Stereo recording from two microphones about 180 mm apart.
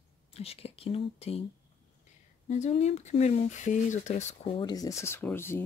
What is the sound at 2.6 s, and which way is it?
Speech, 40° left (ahead or behind).